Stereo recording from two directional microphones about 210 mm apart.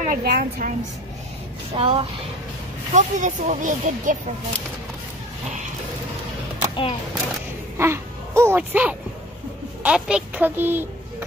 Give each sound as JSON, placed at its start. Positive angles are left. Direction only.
{"t": 0.0, "sound": "speech", "side_deg": -45}
{"t": 1.8, "sound": "speech", "side_deg": -25}
{"t": 2.9, "sound": "speech", "side_deg": -35}
{"t": 6.7, "sound": "speech", "side_deg": 25}
{"t": 7.7, "sound": "a woman's voice", "side_deg": -10}